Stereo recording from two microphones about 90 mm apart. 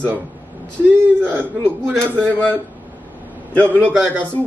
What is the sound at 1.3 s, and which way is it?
Speech, 10° left (ahead or behind).